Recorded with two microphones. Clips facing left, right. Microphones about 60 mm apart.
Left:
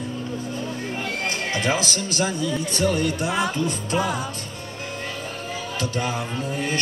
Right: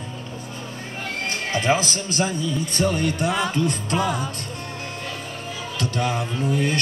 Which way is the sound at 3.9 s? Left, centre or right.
Centre.